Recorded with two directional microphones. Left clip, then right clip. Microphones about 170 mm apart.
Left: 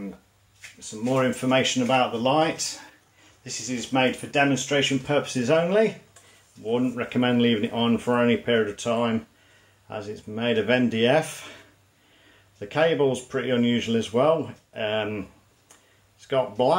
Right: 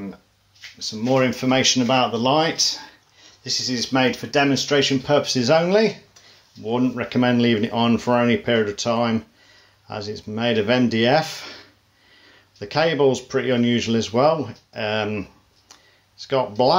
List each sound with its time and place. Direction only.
1.1 s speech: 35° right (ahead or behind)
12.5 s speech: 35° right (ahead or behind)
16.3 s speech: 35° right (ahead or behind)